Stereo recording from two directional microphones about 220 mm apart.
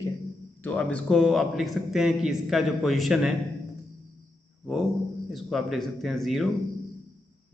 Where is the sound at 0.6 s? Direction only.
5° left (ahead or behind).